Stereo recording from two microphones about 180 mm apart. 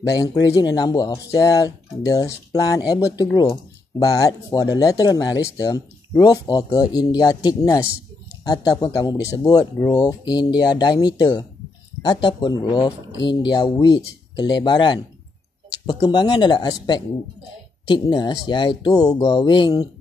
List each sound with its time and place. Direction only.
0.1 s speech: 20° left (ahead or behind)